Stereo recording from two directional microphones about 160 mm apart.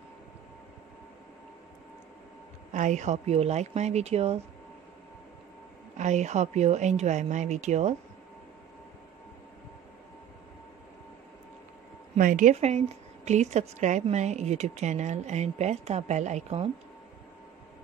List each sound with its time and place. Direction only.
2.7 s speech: 50° right (ahead or behind)
5.9 s speech: 45° right (ahead or behind)
12.2 s speech: 55° right (ahead or behind)